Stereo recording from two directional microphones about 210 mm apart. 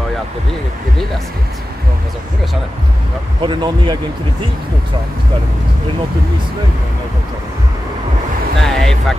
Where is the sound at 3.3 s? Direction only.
20° right (ahead or behind).